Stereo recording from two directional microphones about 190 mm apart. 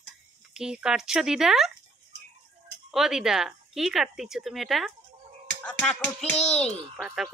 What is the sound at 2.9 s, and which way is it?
Speech, centre (ahead or behind).